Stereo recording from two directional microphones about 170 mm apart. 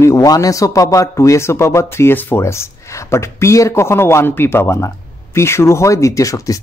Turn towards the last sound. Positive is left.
turn(degrees=20)  # may be behind; listen again after turning